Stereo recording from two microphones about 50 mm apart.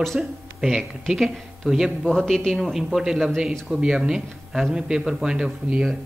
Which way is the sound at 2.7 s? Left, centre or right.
Centre.